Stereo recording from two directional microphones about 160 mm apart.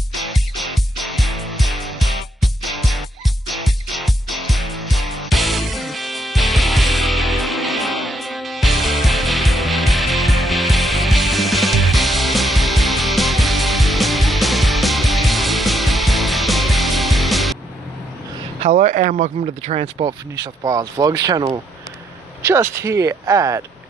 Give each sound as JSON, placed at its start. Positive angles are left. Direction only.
{"t": 0.1, "sound": "music", "side_deg": 0}
{"t": 18.6, "sound": "speech", "side_deg": -45}
{"t": 20.6, "sound": "speech", "side_deg": -20}